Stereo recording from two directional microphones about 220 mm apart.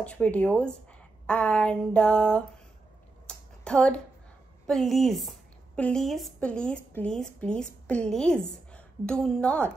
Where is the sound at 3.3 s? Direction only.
5° left (ahead or behind).